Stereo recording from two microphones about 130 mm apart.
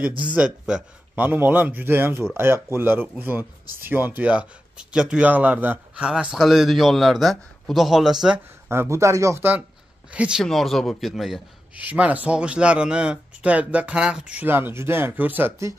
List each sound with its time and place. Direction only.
0.2 s speech: 10° right (ahead or behind)
8.6 s speech: 20° right (ahead or behind)
10.1 s speech: 10° right (ahead or behind)
11.8 s speech: 10° right (ahead or behind)